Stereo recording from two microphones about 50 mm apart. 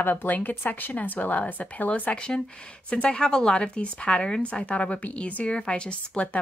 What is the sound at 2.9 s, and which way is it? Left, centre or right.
Speech, centre.